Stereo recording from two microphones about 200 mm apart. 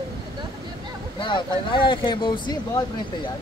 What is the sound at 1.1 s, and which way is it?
Speech, 25° left (ahead or behind).